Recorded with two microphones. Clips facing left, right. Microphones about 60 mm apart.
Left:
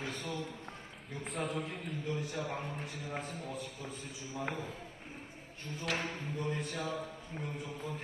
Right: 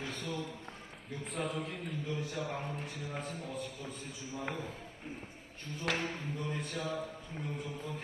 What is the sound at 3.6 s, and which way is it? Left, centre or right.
Speech, right.